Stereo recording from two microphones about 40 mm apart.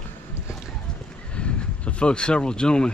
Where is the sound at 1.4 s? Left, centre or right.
Left.